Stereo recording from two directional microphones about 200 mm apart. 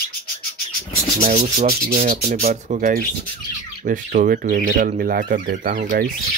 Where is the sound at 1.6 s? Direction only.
45° right (ahead or behind).